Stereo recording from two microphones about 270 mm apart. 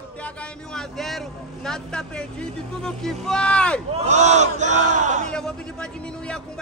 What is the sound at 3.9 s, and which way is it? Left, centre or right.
Speech, right.